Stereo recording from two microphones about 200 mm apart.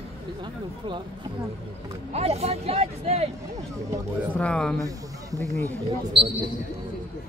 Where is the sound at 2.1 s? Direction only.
30° right (ahead or behind).